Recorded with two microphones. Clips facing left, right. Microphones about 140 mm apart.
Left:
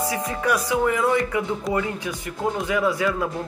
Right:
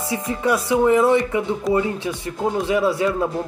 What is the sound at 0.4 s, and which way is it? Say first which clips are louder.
Speech: right 4 dB; 25° right (ahead or behind).